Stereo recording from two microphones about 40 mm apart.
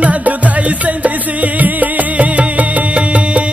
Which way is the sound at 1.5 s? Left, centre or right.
Right.